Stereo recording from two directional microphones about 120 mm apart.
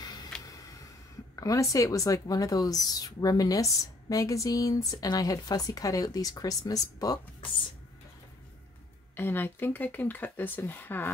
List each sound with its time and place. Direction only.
0.0 s a sound: 35° left (ahead or behind)
1.3 s speech: 30° left (ahead or behind)
9.1 s speech: 15° left (ahead or behind)